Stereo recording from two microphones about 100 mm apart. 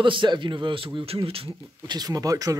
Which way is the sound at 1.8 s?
40° right (ahead or behind).